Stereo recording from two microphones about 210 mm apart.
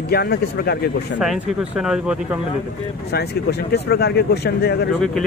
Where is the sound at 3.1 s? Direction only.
50° left (ahead or behind).